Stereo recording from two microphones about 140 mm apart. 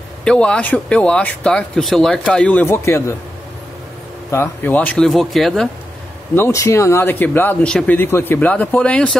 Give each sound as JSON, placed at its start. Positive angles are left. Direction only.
{"t": 0.2, "sound": "speech", "side_deg": 5}
{"t": 4.3, "sound": "speech", "side_deg": 15}
{"t": 6.3, "sound": "speech", "side_deg": 20}